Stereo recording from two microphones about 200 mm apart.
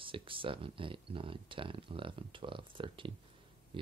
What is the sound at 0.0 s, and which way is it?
Speech, 25° right (ahead or behind).